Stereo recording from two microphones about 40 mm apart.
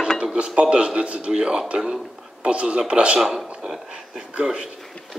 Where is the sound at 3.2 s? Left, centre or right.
Centre.